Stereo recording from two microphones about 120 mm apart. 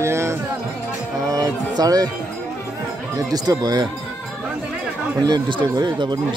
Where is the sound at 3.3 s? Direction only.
30° right (ahead or behind).